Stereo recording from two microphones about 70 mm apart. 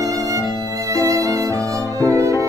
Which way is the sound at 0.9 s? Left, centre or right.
Right.